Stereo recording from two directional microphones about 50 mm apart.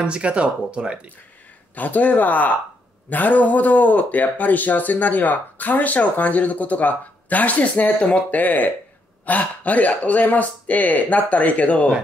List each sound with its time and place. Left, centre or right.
0.0 s speech: right
1.8 s speech: left